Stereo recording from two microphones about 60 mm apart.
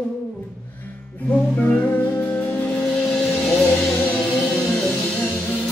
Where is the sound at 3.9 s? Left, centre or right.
Left.